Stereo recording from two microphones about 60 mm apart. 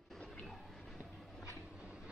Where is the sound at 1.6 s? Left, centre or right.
Centre.